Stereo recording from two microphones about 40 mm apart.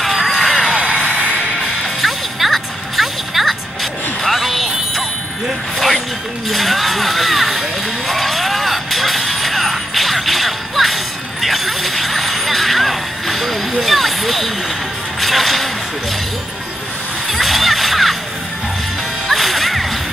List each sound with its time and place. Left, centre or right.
0.0 s music: centre
2.0 s music: centre
6.5 s a sound: centre
8.1 s music: centre
11.4 s a sound: centre
15.1 s music: centre
17.3 s music: centre
19.2 s whip: centre